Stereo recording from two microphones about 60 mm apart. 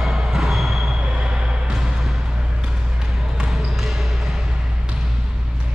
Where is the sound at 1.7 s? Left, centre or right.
Centre.